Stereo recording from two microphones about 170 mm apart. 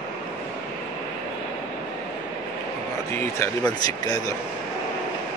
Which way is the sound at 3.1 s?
15° left (ahead or behind).